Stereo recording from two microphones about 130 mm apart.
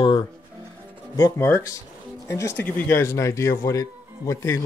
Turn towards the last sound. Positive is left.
turn(degrees=20)  # may be behind; listen again after turning